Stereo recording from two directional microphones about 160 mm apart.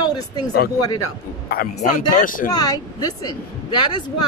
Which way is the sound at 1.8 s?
55° left (ahead or behind).